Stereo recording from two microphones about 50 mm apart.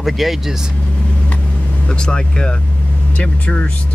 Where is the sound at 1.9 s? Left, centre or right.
Centre.